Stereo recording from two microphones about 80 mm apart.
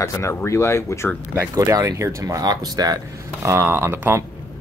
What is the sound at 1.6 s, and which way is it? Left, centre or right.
Speech, right.